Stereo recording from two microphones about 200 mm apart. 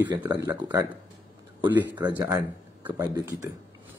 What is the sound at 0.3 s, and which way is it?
Speech, 20° right (ahead or behind).